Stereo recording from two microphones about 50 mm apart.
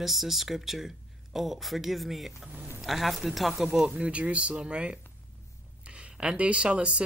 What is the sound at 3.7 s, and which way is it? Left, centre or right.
Speech, centre.